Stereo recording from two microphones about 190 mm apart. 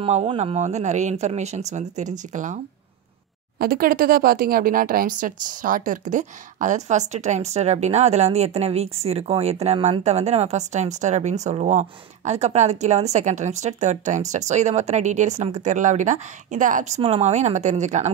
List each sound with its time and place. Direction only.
0.0 s speech: 30° right (ahead or behind)